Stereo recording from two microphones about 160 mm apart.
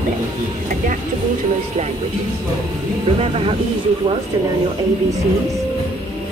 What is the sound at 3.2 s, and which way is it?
Speech, 35° right (ahead or behind).